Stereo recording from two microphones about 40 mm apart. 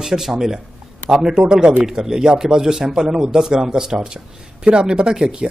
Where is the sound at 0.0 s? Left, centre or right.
Centre.